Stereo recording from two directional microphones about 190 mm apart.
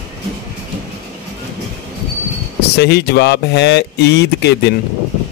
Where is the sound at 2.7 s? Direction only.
60° left (ahead or behind).